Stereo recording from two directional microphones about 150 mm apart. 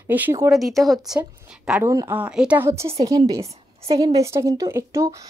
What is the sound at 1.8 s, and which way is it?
Speech, 20° right (ahead or behind).